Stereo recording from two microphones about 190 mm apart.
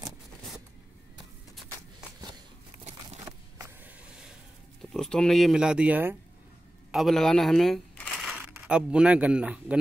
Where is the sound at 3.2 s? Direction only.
15° right (ahead or behind).